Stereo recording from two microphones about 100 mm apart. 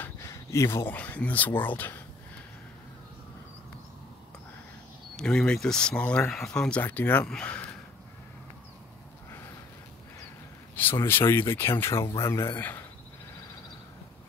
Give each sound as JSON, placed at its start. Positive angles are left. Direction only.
{"t": 0.0, "sound": "a sound", "side_deg": 30}
{"t": 0.9, "sound": "speech", "side_deg": 15}
{"t": 5.1, "sound": "speech", "side_deg": 10}
{"t": 6.8, "sound": "speech", "side_deg": 20}
{"t": 10.8, "sound": "speech", "side_deg": 20}